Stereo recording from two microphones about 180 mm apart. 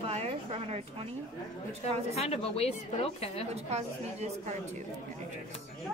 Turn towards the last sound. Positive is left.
turn(degrees=-40)  # may be behind; listen again after turning